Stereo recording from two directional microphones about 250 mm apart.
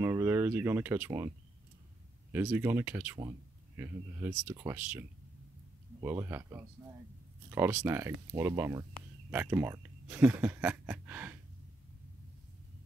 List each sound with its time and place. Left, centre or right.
0.0 s speech: centre
2.3 s speech: centre
7.4 s a sound: centre
7.8 s speech: centre